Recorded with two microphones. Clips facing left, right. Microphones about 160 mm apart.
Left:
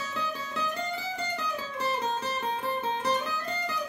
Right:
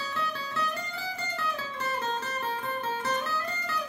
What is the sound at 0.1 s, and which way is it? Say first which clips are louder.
Music: right 1 dB; 20° left (ahead or behind).